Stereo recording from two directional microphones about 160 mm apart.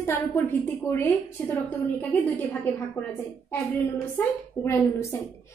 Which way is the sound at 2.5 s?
10° left (ahead or behind).